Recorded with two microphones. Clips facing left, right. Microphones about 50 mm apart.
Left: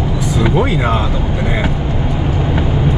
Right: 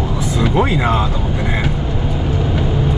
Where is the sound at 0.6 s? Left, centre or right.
Centre.